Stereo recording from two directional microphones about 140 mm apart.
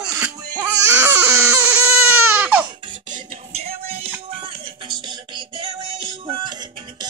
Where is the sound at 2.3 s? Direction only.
10° right (ahead or behind).